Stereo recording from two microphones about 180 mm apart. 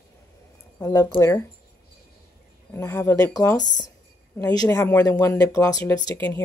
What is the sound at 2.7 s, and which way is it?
Speech, 15° left (ahead or behind).